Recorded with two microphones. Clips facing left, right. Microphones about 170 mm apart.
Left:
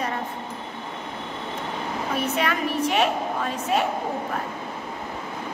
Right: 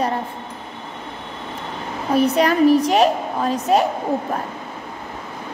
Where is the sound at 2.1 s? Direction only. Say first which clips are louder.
Right 11 dB; 35° right (ahead or behind).